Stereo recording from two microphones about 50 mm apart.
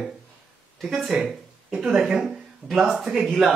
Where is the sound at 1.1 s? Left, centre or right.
Centre.